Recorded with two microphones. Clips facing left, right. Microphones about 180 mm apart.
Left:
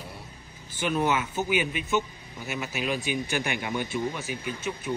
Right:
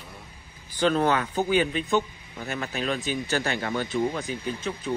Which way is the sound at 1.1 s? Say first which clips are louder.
Right 3 dB; 15° left (ahead or behind).